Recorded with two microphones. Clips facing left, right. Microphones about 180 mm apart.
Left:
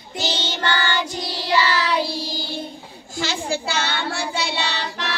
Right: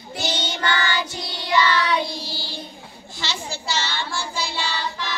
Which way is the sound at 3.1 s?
50° left (ahead or behind).